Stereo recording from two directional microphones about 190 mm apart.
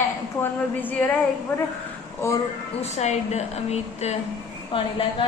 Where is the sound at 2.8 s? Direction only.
35° left (ahead or behind).